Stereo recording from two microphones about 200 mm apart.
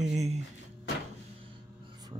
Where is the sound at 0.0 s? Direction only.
35° right (ahead or behind).